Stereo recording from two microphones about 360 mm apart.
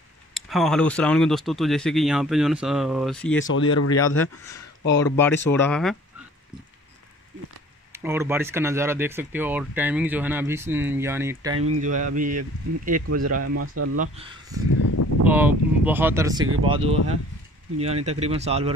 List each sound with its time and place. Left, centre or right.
0.3 s speech: centre
3.3 s speech: left
5.0 s speech: centre
7.9 s speech: centre
11.5 s speech: right
11.8 s speech: right
13.3 s speech: right
14.7 s a sound: left
15.2 s speech: centre